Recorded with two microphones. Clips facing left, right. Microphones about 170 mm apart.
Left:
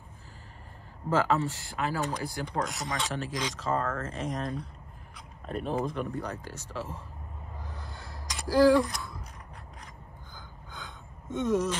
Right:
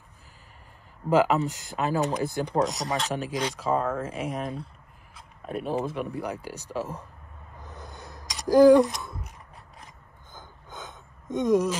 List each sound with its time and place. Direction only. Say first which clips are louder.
1.1 s speech: right 5 dB; 15° right (ahead or behind)
7.6 s a sound: right 5 dB; 20° right (ahead or behind)
8.5 s speech: right 6 dB; 20° right (ahead or behind)
10.3 s gasp: right 5 dB; 20° right (ahead or behind)